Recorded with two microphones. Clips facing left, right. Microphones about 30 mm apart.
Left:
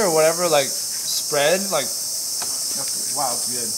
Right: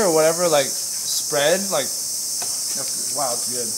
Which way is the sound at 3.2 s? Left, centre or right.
Left.